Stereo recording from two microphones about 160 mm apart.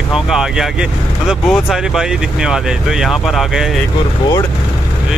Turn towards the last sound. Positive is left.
turn(degrees=0)  # may be behind; listen again after turning